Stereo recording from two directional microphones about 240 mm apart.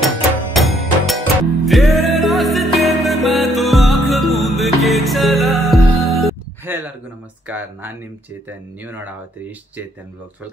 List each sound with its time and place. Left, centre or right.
0.6 s music: centre
7.4 s speech: centre